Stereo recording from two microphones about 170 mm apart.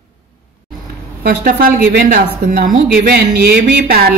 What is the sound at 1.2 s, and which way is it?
A woman's voice, 65° right (ahead or behind).